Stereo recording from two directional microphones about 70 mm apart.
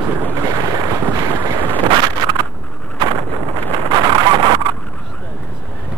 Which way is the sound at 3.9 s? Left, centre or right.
Right.